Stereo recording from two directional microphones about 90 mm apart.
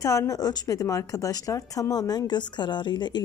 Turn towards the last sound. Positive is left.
turn(degrees=55)  # may be behind; listen again after turning